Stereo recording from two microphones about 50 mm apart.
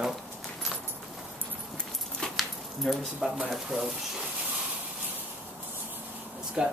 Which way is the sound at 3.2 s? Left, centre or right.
Centre.